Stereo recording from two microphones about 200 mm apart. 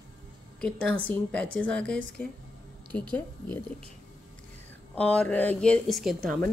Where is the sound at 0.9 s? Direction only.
5° left (ahead or behind).